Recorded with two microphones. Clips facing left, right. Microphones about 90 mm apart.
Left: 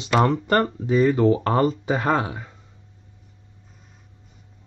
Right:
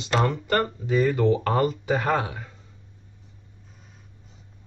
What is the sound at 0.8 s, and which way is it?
Speech, 25° left (ahead or behind).